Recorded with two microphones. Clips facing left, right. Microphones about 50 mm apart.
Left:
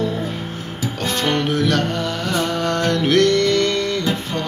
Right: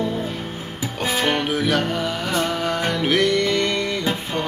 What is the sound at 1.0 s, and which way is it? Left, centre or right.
Music, centre.